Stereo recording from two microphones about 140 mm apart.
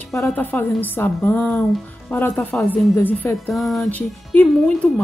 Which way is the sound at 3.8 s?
10° left (ahead or behind).